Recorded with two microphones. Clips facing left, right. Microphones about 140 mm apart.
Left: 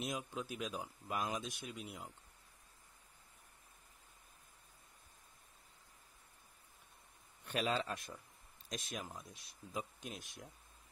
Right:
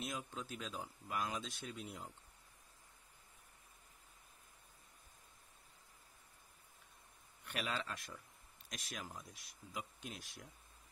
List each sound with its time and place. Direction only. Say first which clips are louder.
0.0 s speech: left 3 dB; 15° left (ahead or behind)
7.4 s speech: left 5 dB; 25° left (ahead or behind)